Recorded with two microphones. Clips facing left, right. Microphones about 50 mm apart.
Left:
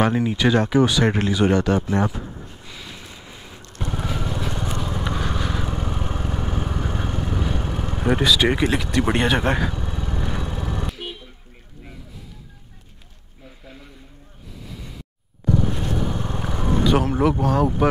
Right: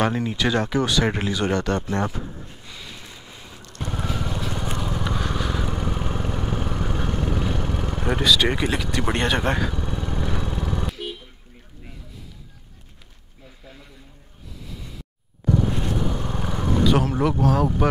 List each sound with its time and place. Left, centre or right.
0.0 s speech: centre
2.3 s a sound: centre
3.1 s vehicle: centre
16.2 s vehicle: centre
16.8 s speech: centre